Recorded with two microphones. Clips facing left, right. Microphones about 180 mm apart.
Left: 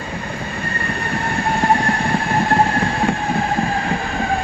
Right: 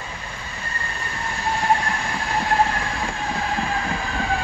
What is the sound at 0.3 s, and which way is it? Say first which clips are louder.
Train: left 9 dB; 60° left (ahead or behind).